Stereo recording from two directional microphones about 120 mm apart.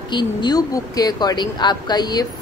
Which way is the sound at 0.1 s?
40° left (ahead or behind).